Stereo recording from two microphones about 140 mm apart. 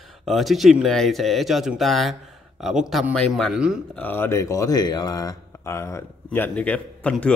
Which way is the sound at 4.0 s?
15° left (ahead or behind).